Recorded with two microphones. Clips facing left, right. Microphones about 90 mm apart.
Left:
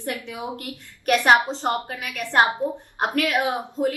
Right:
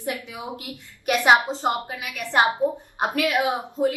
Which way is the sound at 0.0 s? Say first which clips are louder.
Left 1 dB; 15° right (ahead or behind).